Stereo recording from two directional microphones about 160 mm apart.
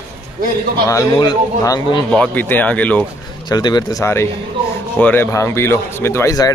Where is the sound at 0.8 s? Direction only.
20° left (ahead or behind).